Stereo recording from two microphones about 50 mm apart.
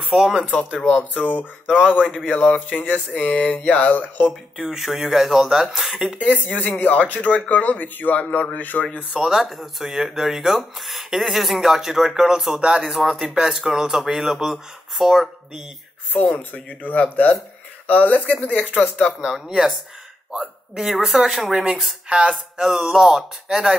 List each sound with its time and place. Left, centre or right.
0.1 s speech: centre
0.9 s speech: left
1.8 s speech: centre
2.5 s speech: left
3.7 s speech: left
4.6 s speech: centre
5.9 s speech: right
6.3 s speech: left
9.1 s speech: centre
12.5 s speech: centre
12.8 s speech: centre
16.1 s speech: left
19.2 s speech: centre